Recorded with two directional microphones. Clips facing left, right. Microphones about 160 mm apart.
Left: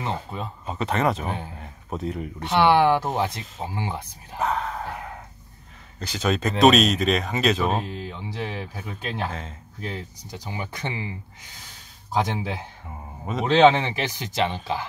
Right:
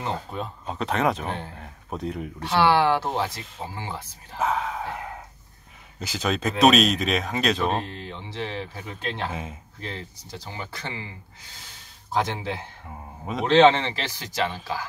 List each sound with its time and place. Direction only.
0.0 s speech: centre (ahead or behind)
2.4 s speech: 20° left (ahead or behind)
4.4 s speech: centre (ahead or behind)
9.3 s speech: 10° right (ahead or behind)
9.8 s speech: 10° left (ahead or behind)
12.1 s speech: 10° left (ahead or behind)
12.9 s speech: centre (ahead or behind)
13.5 s speech: 10° left (ahead or behind)